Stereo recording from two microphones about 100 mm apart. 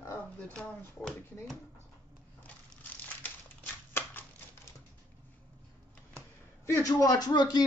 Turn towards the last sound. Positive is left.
turn(degrees=45)  # may be behind; listen again after turning